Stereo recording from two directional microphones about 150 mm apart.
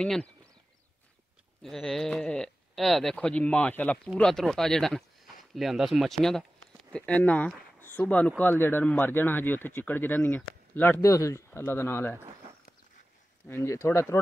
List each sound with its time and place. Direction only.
0.0 s speech: 5° left (ahead or behind)
1.6 s speech: centre (ahead or behind)
13.5 s speech: 15° left (ahead or behind)